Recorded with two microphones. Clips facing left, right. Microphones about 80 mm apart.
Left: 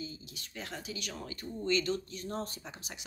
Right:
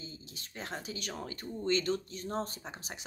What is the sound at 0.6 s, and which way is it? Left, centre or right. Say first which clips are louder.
Speech: right 1 dB; right.